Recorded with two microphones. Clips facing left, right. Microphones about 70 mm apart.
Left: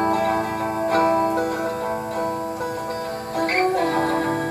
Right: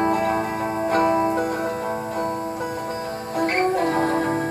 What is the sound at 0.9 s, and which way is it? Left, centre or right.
Music, left.